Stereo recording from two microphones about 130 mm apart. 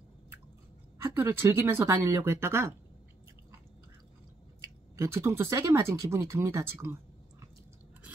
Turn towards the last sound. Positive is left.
turn(degrees=-20)  # may be behind; listen again after turning